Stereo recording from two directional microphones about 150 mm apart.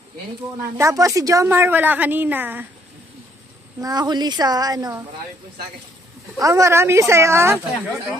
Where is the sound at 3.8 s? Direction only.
30° right (ahead or behind).